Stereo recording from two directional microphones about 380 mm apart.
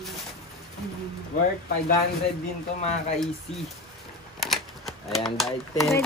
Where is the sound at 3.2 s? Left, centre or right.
Centre.